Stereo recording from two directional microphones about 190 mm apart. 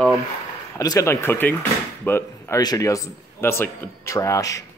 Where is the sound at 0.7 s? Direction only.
15° left (ahead or behind).